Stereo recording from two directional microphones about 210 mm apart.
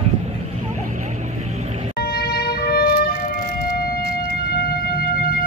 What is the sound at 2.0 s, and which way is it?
Wind instrument, 50° left (ahead or behind).